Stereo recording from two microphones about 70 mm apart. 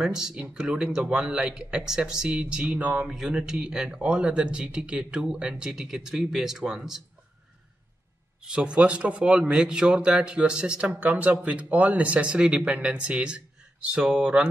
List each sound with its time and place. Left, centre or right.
0.0 s speech: centre
3.1 s speech: centre
8.5 s speech: centre
10.9 s speech: right; by 14.5 s centre